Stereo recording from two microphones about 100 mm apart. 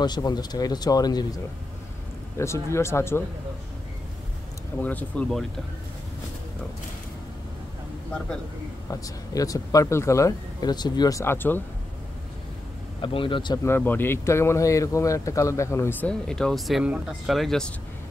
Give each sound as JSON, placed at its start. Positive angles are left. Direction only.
{"t": 0.0, "sound": "speech", "side_deg": 45}
{"t": 2.3, "sound": "speech", "side_deg": 30}
{"t": 4.7, "sound": "speech", "side_deg": 15}
{"t": 8.8, "sound": "speech", "side_deg": 35}
{"t": 10.6, "sound": "speech", "side_deg": 45}
{"t": 11.2, "sound": "speech", "side_deg": 20}
{"t": 13.0, "sound": "speech", "side_deg": 60}
{"t": 13.7, "sound": "speech", "side_deg": 20}
{"t": 16.1, "sound": "speech", "side_deg": 5}
{"t": 16.8, "sound": "speech", "side_deg": -10}
{"t": 17.3, "sound": "speech", "side_deg": 5}